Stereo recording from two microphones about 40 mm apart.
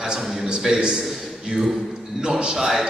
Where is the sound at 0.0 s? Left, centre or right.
Centre.